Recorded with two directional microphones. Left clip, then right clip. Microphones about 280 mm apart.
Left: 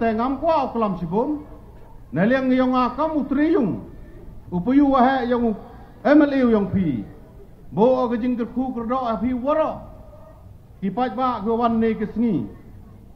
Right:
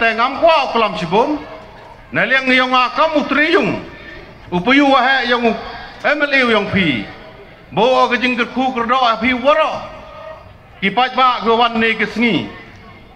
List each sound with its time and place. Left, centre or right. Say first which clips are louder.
0.0 s a man's voice: right 9 dB; right
10.8 s a man's voice: right 10 dB; right